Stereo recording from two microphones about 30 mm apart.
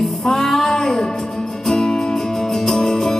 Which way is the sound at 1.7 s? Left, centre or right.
Centre.